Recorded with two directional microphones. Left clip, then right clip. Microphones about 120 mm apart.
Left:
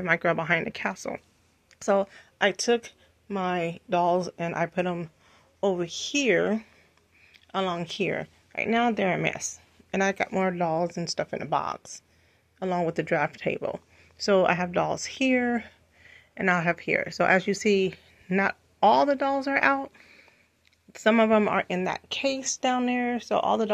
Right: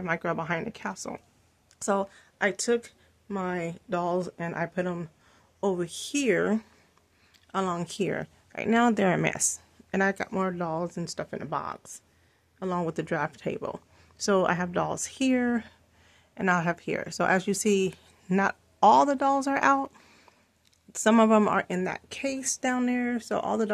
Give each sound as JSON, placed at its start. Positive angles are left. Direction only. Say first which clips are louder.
{"t": 0.0, "sound": "a woman's voice", "louder": "left 5 dB", "side_deg": 0}
{"t": 5.6, "sound": "speech", "louder": "left 2 dB", "side_deg": -25}
{"t": 8.5, "sound": "speech", "louder": "even", "side_deg": -55}
{"t": 9.8, "sound": "speech", "louder": "left 1 dB", "side_deg": -30}
{"t": 10.2, "sound": "speech", "louder": "left 4 dB", "side_deg": -15}
{"t": 12.5, "sound": "speech", "louder": "left 3 dB", "side_deg": -15}
{"t": 13.9, "sound": "speech", "louder": "left 3 dB", "side_deg": -25}
{"t": 20.1, "sound": "a sound", "louder": "left 3 dB", "side_deg": -60}
{"t": 20.9, "sound": "speech", "louder": "even", "side_deg": -35}
{"t": 21.5, "sound": "speech", "louder": "left 2 dB", "side_deg": -25}